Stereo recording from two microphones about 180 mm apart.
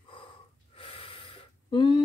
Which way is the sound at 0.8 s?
30° left (ahead or behind).